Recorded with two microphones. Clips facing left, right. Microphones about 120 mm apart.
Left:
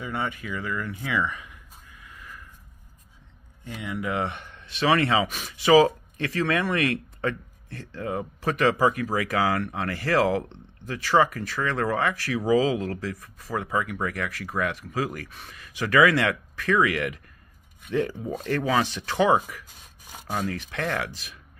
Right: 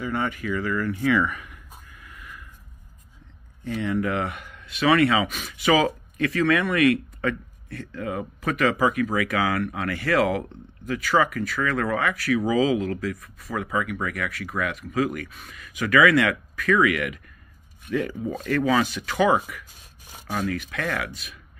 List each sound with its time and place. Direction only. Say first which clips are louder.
0.0 s speech: right 4 dB; 20° left (ahead or behind)
3.8 s speech: right 3 dB; 15° left (ahead or behind)
4.3 s speech: right 1 dB; 30° left (ahead or behind)